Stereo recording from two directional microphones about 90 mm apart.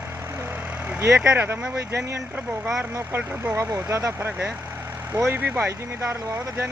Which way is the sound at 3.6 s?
35° right (ahead or behind).